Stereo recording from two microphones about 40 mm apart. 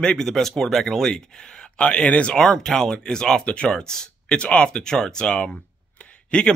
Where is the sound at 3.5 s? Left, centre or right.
Left.